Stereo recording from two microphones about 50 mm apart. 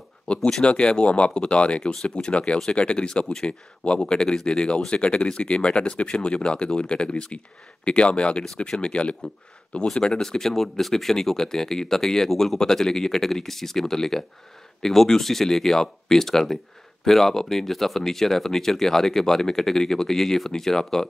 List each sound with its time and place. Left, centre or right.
0.4 s speech: centre